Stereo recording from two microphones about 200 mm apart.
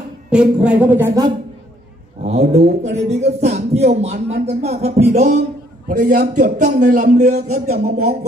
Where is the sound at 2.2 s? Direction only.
35° right (ahead or behind).